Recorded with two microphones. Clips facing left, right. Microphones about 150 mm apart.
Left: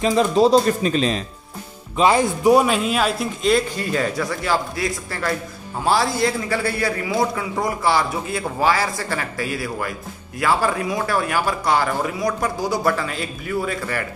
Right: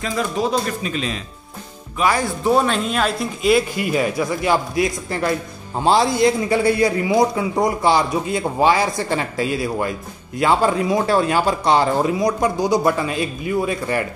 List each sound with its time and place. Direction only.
0.0 s speech: 20° left (ahead or behind)
0.5 s a man's voice: 35° left (ahead or behind)
2.0 s speech: 20° left (ahead or behind); by 3.5 s centre (ahead or behind)
3.5 s a man's voice: 10° right (ahead or behind)